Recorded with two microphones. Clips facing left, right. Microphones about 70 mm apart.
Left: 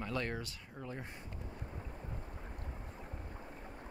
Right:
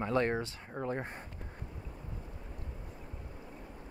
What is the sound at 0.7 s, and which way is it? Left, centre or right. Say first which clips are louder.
Speech: right 10 dB; right.